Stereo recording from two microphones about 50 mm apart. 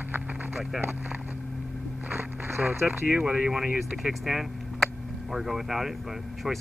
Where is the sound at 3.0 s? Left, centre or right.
Centre.